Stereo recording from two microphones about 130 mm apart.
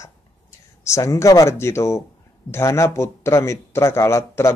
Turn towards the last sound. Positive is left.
turn(degrees=20)  # may be behind; listen again after turning